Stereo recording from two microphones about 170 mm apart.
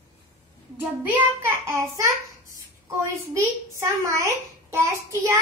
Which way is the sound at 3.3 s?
20° right (ahead or behind).